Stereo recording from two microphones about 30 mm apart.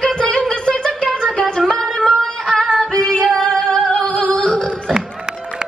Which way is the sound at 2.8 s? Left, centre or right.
Left.